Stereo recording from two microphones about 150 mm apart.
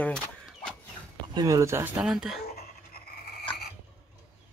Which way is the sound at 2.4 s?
90° left.